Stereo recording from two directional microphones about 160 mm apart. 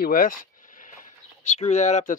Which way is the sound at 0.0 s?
65° left (ahead or behind).